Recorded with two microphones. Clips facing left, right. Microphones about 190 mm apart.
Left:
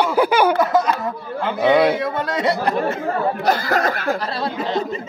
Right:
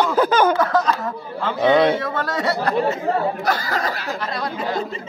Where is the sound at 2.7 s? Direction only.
55° left (ahead or behind).